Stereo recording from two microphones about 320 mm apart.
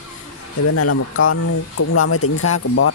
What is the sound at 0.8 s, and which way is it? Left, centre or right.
Speech, left.